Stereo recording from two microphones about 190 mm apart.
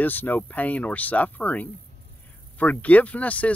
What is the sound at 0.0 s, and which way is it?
Speech, 10° left (ahead or behind).